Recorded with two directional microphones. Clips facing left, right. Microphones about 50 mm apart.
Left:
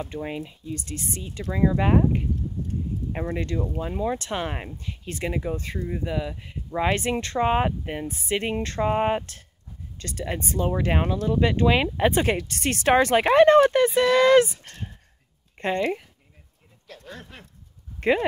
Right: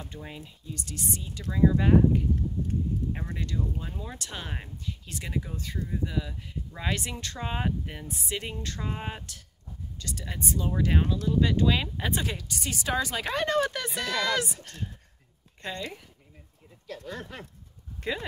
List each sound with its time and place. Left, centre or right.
0.1 s speech: left
15.6 s speech: left
18.0 s speech: left